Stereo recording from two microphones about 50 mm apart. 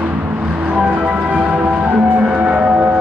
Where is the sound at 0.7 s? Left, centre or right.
Right.